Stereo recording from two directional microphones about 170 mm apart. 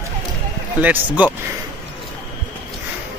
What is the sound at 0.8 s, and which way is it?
Speech, 10° right (ahead or behind).